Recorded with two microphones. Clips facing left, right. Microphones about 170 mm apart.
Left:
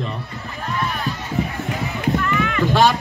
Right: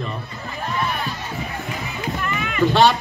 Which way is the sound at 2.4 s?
20° right (ahead or behind).